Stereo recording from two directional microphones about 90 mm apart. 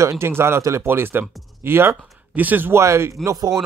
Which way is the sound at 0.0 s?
30° right (ahead or behind).